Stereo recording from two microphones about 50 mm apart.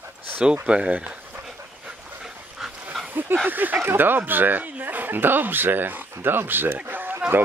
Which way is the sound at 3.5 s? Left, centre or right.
Right.